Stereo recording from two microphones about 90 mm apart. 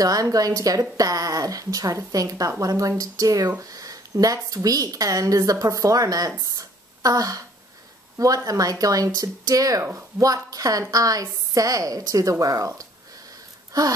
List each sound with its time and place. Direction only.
0.0 s speech: 40° right (ahead or behind)
8.5 s speech: 40° right (ahead or behind)
9.8 s speech: 30° right (ahead or behind)
10.2 s speech: 40° right (ahead or behind)
13.7 s a sound: 45° right (ahead or behind)